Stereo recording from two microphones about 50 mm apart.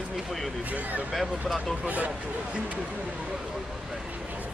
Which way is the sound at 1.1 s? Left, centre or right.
Centre.